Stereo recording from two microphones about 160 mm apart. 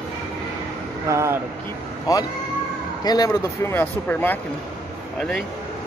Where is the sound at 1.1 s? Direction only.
20° right (ahead or behind).